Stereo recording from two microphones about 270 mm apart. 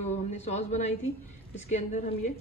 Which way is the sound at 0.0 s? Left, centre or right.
Left.